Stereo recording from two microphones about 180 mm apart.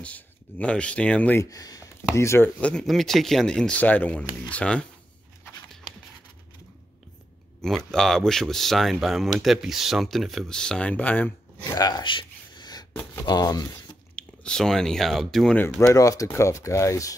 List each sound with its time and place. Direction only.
0.0 s speech: 5° left (ahead or behind)
7.6 s speech: 5° left (ahead or behind)
11.8 s a sound: 25° left (ahead or behind)
13.2 s speech: 20° left (ahead or behind)
14.1 s speech: 5° left (ahead or behind)